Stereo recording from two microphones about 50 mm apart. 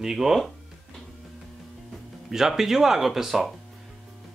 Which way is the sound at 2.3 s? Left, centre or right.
Centre.